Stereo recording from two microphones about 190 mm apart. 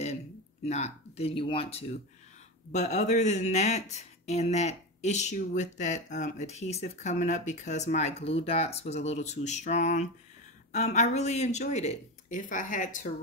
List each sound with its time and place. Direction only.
0.7 s speech: 35° left (ahead or behind)